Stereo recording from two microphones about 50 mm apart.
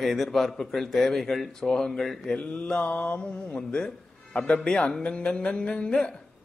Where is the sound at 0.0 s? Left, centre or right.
Centre.